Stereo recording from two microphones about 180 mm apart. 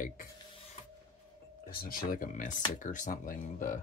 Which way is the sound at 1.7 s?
55° left (ahead or behind).